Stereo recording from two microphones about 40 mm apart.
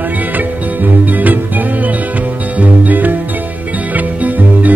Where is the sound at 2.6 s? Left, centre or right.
Right.